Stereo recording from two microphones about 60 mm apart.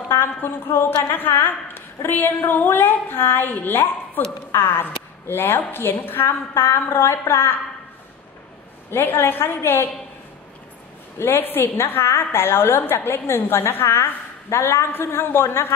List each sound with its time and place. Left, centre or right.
0.1 s a woman's voice: left
8.9 s a woman's voice: left
11.1 s a woman's voice: left